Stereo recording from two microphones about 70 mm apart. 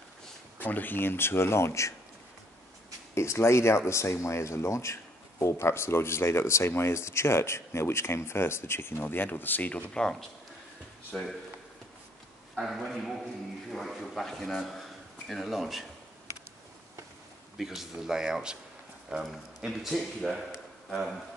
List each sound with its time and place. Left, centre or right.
0.6 s speech: left
3.2 s speech: left
12.5 s a man's voice: centre
17.6 s a man's voice: centre